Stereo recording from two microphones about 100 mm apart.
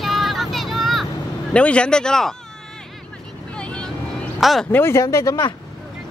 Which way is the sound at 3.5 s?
10° left (ahead or behind).